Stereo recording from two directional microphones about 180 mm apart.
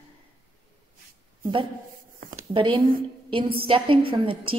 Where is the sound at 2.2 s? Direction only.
30° right (ahead or behind).